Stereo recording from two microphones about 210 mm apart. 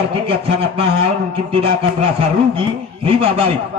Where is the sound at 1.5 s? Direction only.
25° right (ahead or behind).